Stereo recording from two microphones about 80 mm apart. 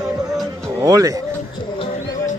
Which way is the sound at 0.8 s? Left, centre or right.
Right.